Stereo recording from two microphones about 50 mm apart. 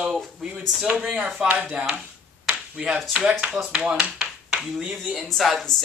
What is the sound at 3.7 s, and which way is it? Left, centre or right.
Speech, right.